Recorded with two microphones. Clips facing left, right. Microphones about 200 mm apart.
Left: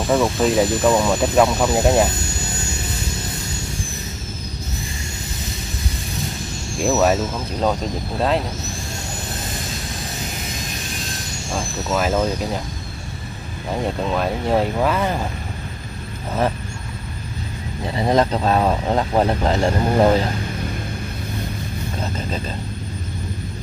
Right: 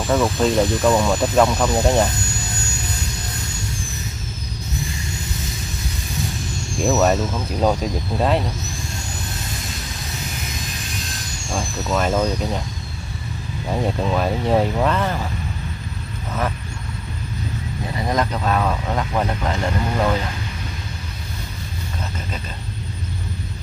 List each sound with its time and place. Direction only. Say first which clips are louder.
0.1 s speech: left 1 dB; centre (ahead or behind)
6.5 s speech: even; centre (ahead or behind)
11.5 s speech: even; centre (ahead or behind)
13.8 s speech: even; centre (ahead or behind)
17.9 s speech: left 5 dB; 30° left (ahead or behind)